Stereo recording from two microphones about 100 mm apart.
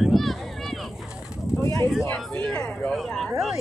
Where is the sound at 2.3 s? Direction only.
10° left (ahead or behind).